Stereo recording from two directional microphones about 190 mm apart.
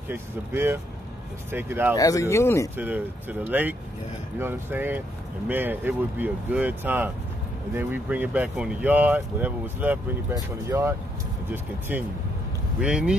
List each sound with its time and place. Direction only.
0.1 s speech: 10° right (ahead or behind)
2.0 s speech: 15° left (ahead or behind)
2.8 s speech: 10° right (ahead or behind)